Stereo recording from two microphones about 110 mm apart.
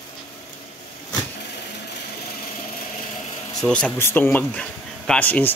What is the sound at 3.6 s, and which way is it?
Speech, 10° left (ahead or behind).